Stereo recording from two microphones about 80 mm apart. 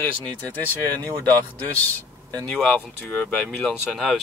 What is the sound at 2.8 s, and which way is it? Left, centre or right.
Speech, left.